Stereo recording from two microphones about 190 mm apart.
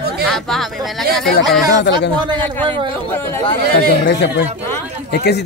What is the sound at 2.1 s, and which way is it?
Speech, 25° right (ahead or behind).